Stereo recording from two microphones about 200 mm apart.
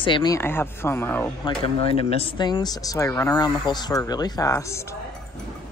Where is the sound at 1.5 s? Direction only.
30° left (ahead or behind).